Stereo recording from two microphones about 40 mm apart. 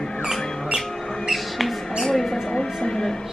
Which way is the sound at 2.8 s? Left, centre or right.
Centre.